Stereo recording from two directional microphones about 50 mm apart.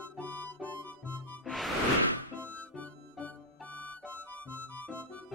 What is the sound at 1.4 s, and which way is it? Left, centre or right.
Music, centre.